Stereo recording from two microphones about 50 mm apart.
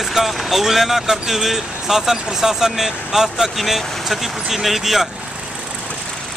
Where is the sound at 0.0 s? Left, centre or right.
Centre.